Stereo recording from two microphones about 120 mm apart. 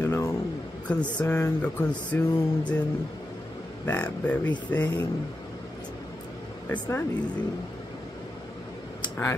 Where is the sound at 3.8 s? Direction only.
15° left (ahead or behind).